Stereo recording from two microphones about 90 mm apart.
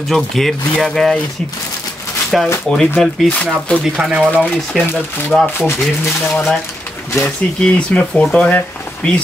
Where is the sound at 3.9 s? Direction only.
10° right (ahead or behind).